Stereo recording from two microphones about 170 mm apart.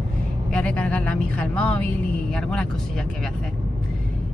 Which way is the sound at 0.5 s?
5° left (ahead or behind).